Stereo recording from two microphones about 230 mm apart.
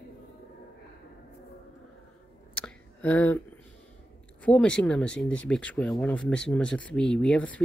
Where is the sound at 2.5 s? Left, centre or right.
Centre.